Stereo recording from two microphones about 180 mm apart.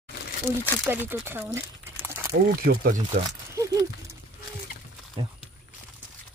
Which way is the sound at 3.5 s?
15° right (ahead or behind).